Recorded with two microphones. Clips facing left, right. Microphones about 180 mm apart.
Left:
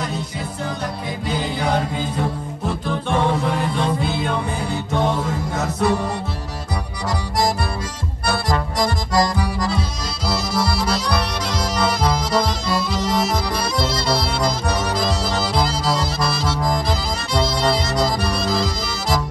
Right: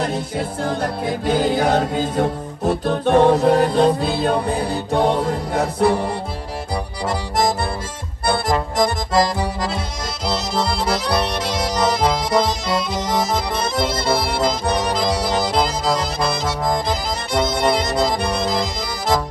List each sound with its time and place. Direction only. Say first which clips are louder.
1.2 s music: right 6 dB; 50° right (ahead or behind); by 6.0 s 30° right (ahead or behind)
8.3 s accordion: right 2 dB; 25° right (ahead or behind)
10.2 s music: even; 25° right (ahead or behind)
17.3 s accordion: right 2 dB; 20° right (ahead or behind)